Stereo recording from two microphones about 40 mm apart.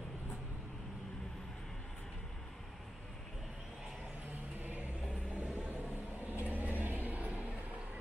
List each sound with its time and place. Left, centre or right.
4.6 s vehicle: right
5.3 s a sound: right
6.4 s vehicle: right